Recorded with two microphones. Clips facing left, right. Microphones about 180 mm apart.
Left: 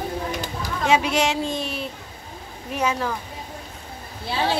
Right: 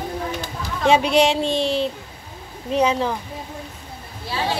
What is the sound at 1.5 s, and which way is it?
Speech, 90° right.